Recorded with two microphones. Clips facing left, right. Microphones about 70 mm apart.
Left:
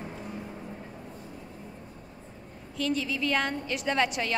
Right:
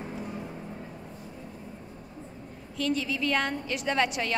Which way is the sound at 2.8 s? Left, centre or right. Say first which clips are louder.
Even; centre.